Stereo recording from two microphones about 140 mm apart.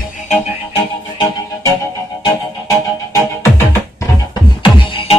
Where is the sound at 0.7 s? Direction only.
30° left (ahead or behind).